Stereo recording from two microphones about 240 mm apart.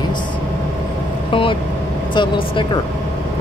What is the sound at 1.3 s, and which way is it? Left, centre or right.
Speech, left.